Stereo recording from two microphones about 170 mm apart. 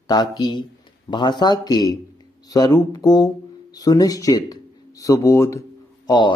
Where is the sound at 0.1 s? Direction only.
25° left (ahead or behind).